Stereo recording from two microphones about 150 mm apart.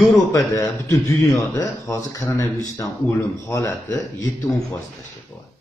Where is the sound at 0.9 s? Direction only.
20° left (ahead or behind).